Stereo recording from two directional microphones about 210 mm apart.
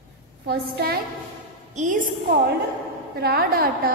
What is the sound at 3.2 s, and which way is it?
Speech, 45° right (ahead or behind).